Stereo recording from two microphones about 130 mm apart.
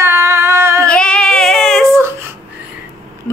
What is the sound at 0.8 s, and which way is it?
Female singing, 5° left (ahead or behind).